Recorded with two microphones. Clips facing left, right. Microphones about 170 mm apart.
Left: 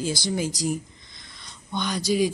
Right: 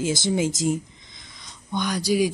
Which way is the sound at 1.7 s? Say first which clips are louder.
Right 2 dB; 10° right (ahead or behind).